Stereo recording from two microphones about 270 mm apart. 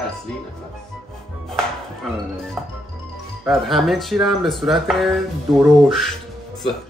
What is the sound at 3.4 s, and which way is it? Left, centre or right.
Speech, centre.